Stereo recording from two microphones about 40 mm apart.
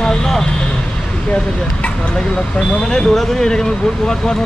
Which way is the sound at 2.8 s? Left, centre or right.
Centre.